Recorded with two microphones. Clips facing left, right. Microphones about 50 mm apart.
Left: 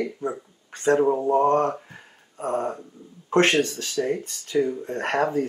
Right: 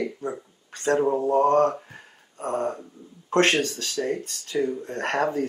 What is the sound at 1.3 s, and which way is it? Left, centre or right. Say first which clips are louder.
Speech: right 3 dB; centre.